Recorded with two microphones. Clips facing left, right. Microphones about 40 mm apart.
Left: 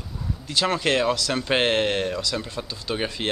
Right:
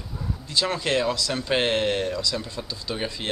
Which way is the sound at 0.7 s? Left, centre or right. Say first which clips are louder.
Left 3 dB; left.